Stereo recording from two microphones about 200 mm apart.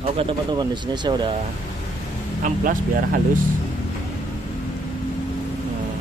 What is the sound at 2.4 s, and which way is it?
Speech, 40° right (ahead or behind).